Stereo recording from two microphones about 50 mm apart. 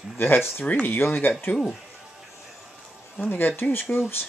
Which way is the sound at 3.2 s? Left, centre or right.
Left.